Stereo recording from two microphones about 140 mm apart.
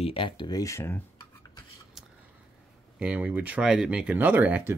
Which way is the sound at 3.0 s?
10° right (ahead or behind).